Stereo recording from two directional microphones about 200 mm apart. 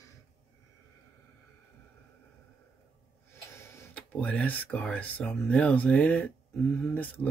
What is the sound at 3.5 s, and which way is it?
Speech, 15° left (ahead or behind).